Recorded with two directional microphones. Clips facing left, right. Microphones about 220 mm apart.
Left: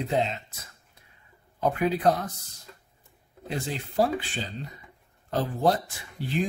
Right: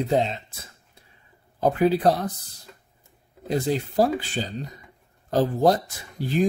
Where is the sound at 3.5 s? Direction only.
40° right (ahead or behind).